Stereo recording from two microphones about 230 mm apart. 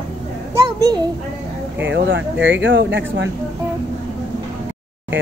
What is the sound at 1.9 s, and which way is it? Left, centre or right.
Speech, right.